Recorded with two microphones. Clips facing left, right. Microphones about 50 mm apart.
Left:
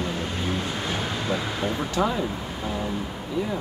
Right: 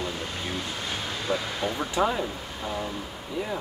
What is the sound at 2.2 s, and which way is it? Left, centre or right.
Speech, centre.